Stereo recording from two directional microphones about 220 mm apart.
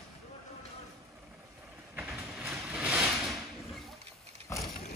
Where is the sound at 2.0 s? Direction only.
5° right (ahead or behind).